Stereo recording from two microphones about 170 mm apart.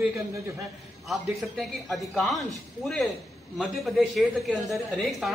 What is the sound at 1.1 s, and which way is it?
Speech, centre (ahead or behind).